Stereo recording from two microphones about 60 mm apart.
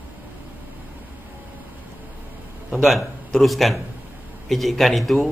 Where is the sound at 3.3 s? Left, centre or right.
Centre.